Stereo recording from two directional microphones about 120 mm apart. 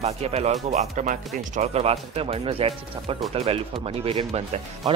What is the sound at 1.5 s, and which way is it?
Speech, 60° right (ahead or behind).